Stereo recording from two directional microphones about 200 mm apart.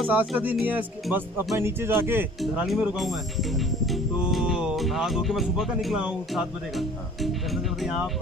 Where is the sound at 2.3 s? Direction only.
Centre (ahead or behind).